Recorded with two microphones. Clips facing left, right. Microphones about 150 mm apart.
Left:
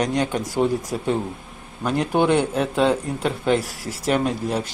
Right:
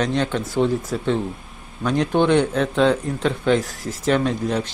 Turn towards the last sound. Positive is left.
turn(degrees=10)  # may be behind; listen again after turning